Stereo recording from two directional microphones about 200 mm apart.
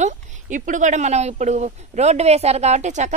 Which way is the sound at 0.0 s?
40° right (ahead or behind).